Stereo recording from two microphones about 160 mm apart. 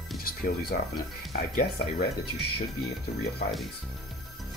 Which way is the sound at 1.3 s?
55° left (ahead or behind).